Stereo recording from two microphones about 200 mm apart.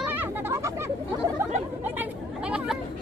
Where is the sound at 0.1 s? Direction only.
10° right (ahead or behind).